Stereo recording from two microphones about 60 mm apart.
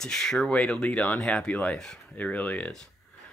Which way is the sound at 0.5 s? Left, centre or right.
Centre.